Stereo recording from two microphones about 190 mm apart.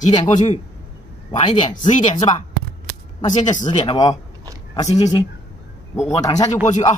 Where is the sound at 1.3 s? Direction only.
25° left (ahead or behind).